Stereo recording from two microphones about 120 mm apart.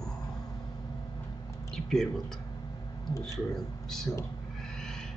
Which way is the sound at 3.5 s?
5° left (ahead or behind).